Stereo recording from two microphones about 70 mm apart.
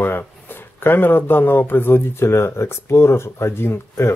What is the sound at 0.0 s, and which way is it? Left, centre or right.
Speech, left.